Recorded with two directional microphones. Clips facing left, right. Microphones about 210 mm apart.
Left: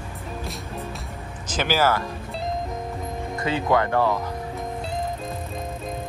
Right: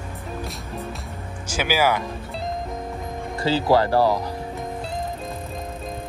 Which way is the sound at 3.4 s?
30° right (ahead or behind).